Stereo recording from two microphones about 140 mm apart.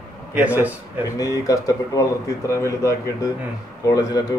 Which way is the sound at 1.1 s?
25° left (ahead or behind).